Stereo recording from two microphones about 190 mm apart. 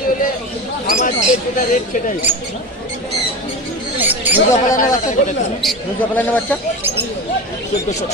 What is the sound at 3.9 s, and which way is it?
Mouse, 10° right (ahead or behind).